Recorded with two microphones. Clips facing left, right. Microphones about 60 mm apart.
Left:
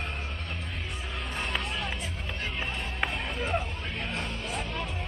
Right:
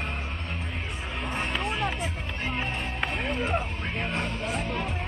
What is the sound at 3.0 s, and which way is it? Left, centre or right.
Music, centre.